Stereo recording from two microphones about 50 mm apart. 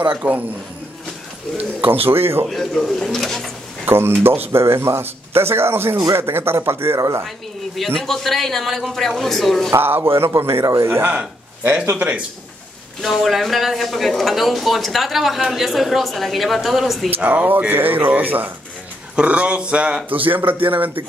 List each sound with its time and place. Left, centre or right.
0.2 s speech: right
1.8 s a man's voice: right
2.4 s a woman's voice: centre
3.8 s a man's voice: right
7.0 s speech: right
7.2 s a woman's voice: centre
9.8 s a man's voice: right
13.0 s a woman's voice: centre
17.2 s speech: right
19.2 s speech: right
20.1 s speech: right